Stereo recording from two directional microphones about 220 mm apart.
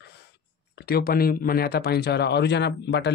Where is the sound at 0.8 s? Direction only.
45° left (ahead or behind).